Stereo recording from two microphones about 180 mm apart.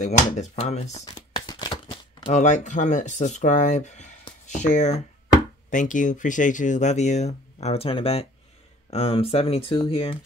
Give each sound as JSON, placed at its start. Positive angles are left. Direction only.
{"t": 0.0, "sound": "speech", "side_deg": 40}
{"t": 1.1, "sound": "crumpling", "side_deg": 25}
{"t": 2.4, "sound": "speech", "side_deg": 45}